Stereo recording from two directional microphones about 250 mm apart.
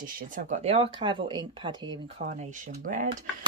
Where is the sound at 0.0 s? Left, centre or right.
Right.